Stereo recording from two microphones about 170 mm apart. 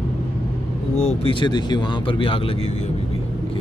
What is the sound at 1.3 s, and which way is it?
Speech, 25° left (ahead or behind).